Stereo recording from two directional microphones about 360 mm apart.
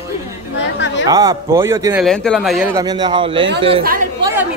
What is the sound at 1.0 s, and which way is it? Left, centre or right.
Speech, centre.